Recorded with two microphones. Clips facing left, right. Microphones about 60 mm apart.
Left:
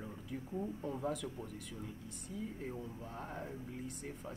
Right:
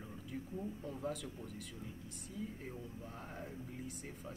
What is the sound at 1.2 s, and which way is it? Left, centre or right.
Speech, left.